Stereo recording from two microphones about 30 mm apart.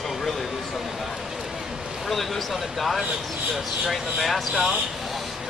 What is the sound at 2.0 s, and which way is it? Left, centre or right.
Speech, centre.